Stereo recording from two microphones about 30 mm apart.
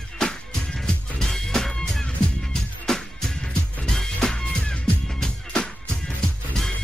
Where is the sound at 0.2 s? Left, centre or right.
Centre.